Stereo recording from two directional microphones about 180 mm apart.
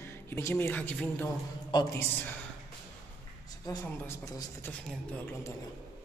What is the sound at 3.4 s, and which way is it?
Speech, 20° left (ahead or behind).